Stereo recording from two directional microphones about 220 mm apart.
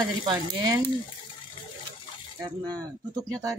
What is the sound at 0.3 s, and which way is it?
Stir, 20° right (ahead or behind).